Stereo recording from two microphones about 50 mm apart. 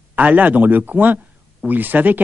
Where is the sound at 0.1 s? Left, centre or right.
Right.